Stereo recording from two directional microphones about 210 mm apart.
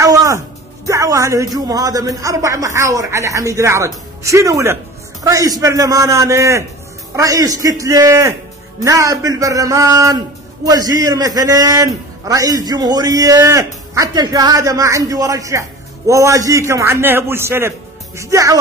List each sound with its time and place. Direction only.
0.0 s music: 15° right (ahead or behind)
0.8 s speech: 15° right (ahead or behind)